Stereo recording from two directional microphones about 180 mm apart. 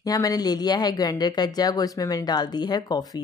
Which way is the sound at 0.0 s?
20° left (ahead or behind).